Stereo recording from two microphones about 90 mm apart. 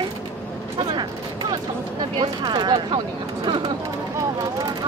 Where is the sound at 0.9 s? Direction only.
55° right (ahead or behind).